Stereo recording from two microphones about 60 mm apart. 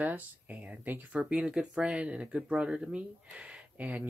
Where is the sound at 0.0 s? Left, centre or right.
Right.